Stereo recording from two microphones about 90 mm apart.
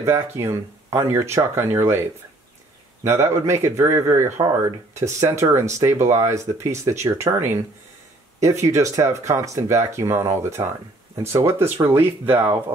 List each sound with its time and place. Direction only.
0.0 s speech: 30° right (ahead or behind)